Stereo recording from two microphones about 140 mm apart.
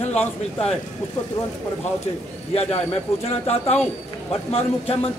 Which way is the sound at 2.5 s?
50° left (ahead or behind).